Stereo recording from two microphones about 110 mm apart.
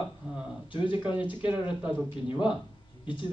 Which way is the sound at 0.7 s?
50° left (ahead or behind).